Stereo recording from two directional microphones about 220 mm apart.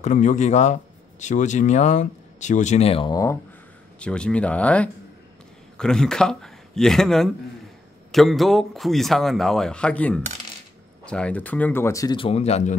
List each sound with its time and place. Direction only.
0.0 s speech: 35° left (ahead or behind); by 3.3 s 15° left (ahead or behind)
4.0 s a man's voice: 5° left (ahead or behind); by 12.7 s 30° left (ahead or behind)